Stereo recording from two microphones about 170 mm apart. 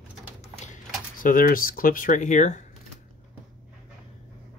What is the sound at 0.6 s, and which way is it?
Speech, 50° left (ahead or behind).